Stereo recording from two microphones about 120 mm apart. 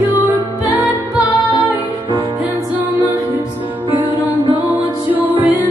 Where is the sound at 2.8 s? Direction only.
15° right (ahead or behind).